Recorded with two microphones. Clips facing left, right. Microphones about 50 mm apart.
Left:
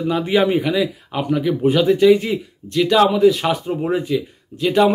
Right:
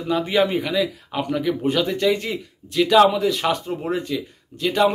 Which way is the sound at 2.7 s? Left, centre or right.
Centre.